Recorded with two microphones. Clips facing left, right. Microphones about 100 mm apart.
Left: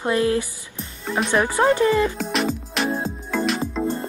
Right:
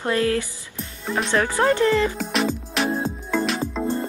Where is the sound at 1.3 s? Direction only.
15° left (ahead or behind).